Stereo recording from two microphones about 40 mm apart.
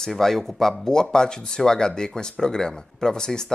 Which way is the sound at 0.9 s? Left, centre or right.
Centre.